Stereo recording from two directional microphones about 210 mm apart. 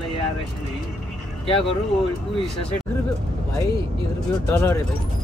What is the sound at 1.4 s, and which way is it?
Speech, 25° left (ahead or behind).